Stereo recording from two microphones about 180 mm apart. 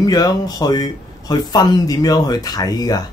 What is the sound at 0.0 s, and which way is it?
Speech, 20° left (ahead or behind).